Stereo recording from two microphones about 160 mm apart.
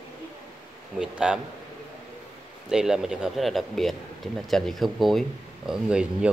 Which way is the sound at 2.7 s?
5° right (ahead or behind).